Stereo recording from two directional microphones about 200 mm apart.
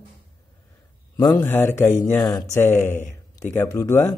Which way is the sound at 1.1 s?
15° left (ahead or behind).